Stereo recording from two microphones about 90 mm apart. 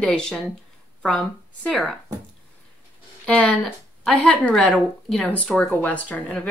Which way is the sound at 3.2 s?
10° left (ahead or behind).